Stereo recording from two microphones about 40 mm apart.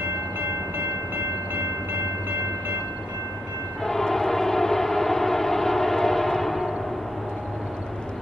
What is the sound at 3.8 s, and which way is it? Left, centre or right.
Train, centre.